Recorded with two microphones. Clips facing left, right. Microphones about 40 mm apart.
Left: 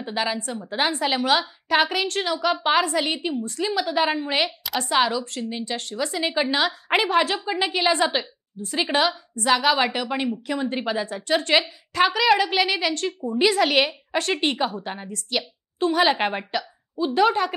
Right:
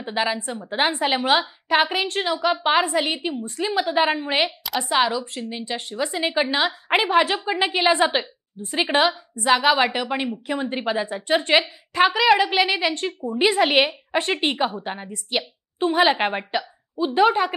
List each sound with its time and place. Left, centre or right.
0.0 s a woman's voice: centre
4.6 s a woman's voice: centre